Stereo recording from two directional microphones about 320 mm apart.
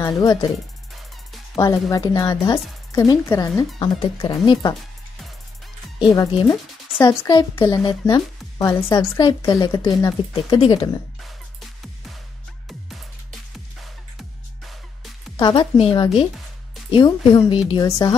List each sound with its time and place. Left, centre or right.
0.0 s speech: centre
1.5 s speech: centre
6.1 s speech: centre
15.3 s speech: centre